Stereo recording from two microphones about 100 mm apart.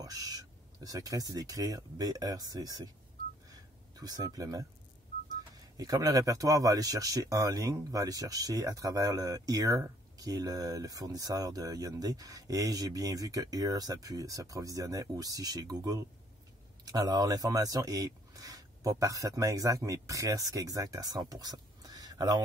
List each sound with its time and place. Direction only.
0.0 s speech: 40° right (ahead or behind)
3.4 s a sound: 40° right (ahead or behind)
5.8 s speech: 40° right (ahead or behind)